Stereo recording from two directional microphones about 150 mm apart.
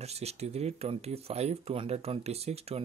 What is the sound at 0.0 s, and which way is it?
Speech, 45° right (ahead or behind).